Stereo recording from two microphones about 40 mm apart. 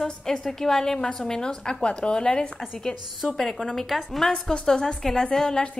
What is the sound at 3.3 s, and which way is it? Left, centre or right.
A woman's voice, centre.